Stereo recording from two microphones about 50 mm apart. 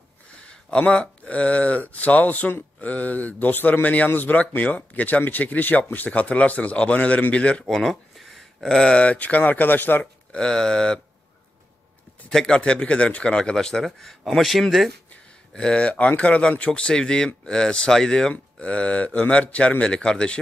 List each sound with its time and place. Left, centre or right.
0.5 s speech: left
7.6 s a sound: centre
8.6 s speech: centre; by 10.0 s left
10.3 s speech: centre
12.3 s speech: centre
15.5 s speech: centre
18.3 s speech: left